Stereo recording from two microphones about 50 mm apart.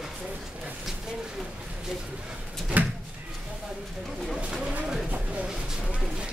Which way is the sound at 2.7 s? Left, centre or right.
Right.